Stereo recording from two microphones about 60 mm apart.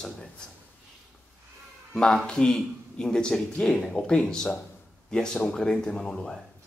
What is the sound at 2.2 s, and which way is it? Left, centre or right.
Speech, centre.